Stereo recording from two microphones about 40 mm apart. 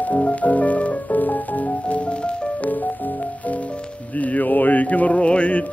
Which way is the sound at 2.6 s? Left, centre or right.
Left.